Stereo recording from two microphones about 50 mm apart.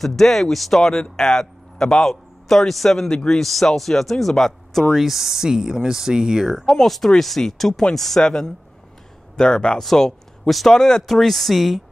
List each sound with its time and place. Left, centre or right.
0.0 s a man's voice: centre
4.9 s speech: centre
6.4 s speech: centre